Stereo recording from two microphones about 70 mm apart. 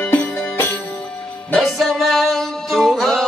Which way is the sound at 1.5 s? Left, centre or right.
Centre.